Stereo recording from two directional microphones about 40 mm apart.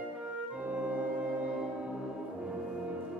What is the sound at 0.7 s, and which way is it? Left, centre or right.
Clarinet, right.